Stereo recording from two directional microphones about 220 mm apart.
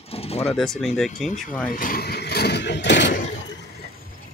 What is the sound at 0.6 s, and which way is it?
Speech, centre (ahead or behind).